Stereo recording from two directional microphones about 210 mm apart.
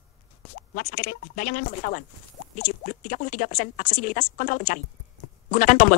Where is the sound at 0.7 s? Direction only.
40° left (ahead or behind).